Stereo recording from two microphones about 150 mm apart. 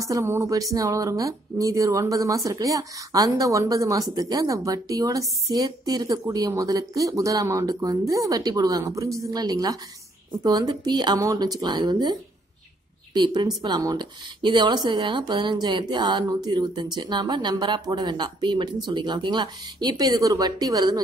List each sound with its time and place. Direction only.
0.0 s speech: 20° right (ahead or behind)